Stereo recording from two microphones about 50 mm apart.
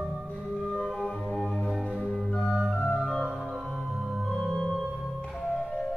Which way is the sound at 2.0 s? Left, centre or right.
Centre.